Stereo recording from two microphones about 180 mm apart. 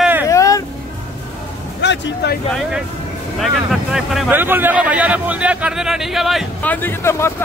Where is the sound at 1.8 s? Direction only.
75° left (ahead or behind).